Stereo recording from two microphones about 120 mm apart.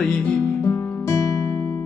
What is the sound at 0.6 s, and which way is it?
Music, 25° left (ahead or behind).